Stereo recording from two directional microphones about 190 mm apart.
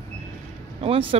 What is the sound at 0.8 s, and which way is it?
Speech, 30° right (ahead or behind).